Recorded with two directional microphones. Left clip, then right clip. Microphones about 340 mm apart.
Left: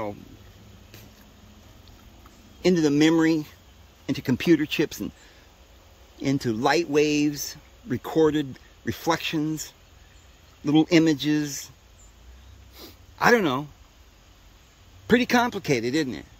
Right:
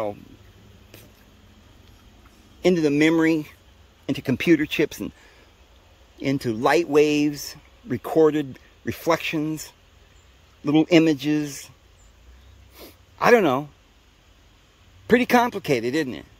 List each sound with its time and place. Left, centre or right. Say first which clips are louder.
2.6 s speech: right 1 dB; centre
6.1 s speech: right 1 dB; centre
12.7 s a sound: even; centre
15.0 s speech: right 3 dB; centre